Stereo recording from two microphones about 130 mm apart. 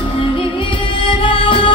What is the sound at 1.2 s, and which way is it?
Music, 40° left (ahead or behind).